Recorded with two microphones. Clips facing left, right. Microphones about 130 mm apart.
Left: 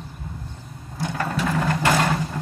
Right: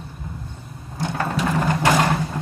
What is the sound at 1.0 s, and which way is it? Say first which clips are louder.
Sewing machine: right 2 dB; 20° right (ahead or behind).